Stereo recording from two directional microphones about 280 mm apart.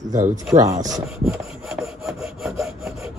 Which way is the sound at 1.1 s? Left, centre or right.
Centre.